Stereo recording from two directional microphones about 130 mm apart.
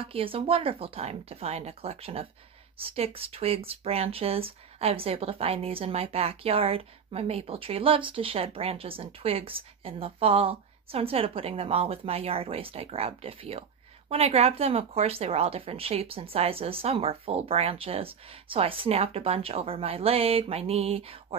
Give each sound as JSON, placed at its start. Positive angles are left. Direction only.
{"t": 0.0, "sound": "speech", "side_deg": -45}